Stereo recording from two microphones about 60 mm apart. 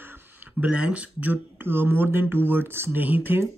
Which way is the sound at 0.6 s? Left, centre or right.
Right.